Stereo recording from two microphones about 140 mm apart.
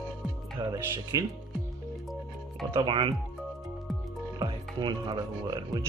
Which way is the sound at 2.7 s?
35° right (ahead or behind).